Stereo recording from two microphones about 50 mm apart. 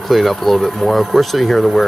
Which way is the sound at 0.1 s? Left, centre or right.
Centre.